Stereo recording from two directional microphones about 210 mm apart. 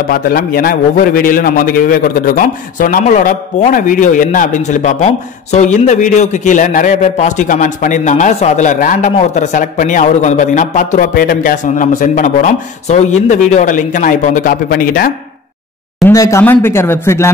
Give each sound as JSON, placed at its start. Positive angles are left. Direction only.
{"t": 0.1, "sound": "a man's voice", "side_deg": 45}
{"t": 16.0, "sound": "speech", "side_deg": 15}